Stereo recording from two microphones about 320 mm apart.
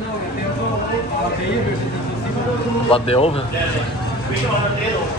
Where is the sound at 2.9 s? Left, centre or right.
Centre.